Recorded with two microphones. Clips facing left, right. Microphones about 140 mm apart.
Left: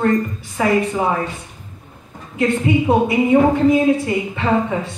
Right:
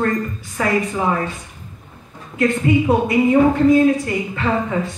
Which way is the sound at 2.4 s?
20° left (ahead or behind).